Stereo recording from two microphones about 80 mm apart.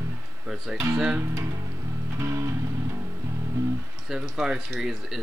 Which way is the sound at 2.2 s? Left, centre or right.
Right.